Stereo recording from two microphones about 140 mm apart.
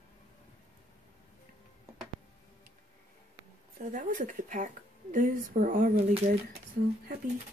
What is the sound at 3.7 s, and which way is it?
Speech, 75° right (ahead or behind).